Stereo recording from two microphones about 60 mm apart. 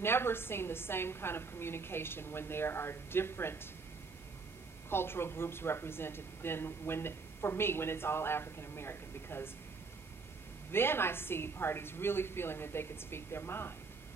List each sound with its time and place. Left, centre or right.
0.0 s speech: left
4.8 s speech: left
10.7 s speech: left